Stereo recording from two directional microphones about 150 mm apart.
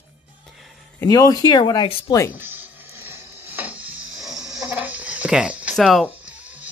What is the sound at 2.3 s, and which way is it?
Music, 10° right (ahead or behind).